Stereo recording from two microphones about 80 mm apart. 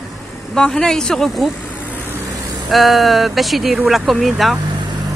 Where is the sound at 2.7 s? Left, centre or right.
Centre.